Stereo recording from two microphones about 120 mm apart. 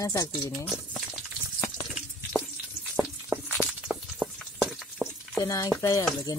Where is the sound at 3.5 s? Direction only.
Centre (ahead or behind).